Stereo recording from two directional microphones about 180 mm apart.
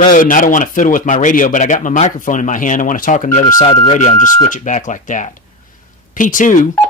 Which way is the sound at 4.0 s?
40° left (ahead or behind).